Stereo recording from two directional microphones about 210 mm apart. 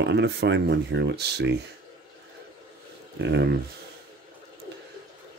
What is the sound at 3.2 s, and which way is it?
Speech, 55° right (ahead or behind).